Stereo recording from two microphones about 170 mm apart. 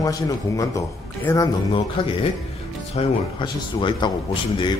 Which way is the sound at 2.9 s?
30° left (ahead or behind).